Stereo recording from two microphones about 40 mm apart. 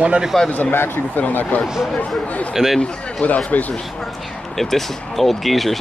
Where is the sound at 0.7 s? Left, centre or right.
Left.